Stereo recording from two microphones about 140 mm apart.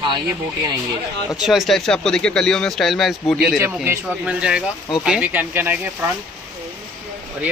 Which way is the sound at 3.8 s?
15° right (ahead or behind).